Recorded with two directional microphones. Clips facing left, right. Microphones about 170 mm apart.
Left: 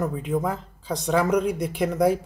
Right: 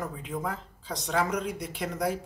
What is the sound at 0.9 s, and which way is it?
Speech, 50° left (ahead or behind).